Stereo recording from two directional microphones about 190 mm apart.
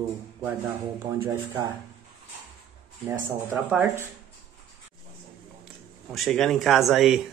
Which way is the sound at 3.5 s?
10° right (ahead or behind).